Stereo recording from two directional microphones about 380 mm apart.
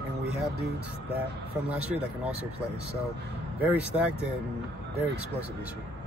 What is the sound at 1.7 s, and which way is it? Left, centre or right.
Speech, centre.